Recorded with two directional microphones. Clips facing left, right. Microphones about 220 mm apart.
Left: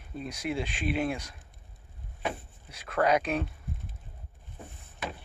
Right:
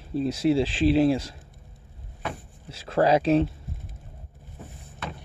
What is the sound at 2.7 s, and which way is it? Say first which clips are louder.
Speech: right 5 dB; 30° right (ahead or behind).